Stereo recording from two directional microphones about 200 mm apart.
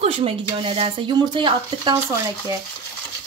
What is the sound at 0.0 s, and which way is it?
Speech, 30° right (ahead or behind).